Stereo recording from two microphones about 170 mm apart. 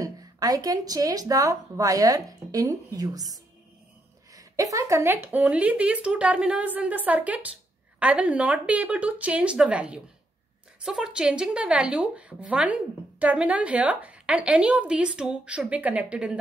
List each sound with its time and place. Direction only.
0.0 s speech: 20° right (ahead or behind)
4.3 s speech: 20° right (ahead or behind)